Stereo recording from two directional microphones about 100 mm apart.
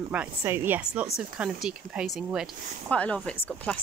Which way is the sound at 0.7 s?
15° right (ahead or behind).